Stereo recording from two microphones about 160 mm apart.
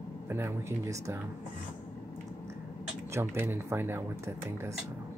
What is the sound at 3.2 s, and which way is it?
Speech, 15° right (ahead or behind).